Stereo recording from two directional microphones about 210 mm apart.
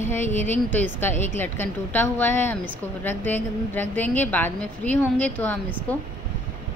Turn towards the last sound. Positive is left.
turn(degrees=5)  # may be behind; listen again after turning